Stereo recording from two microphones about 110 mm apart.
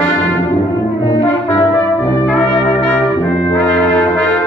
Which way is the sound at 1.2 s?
25° left (ahead or behind).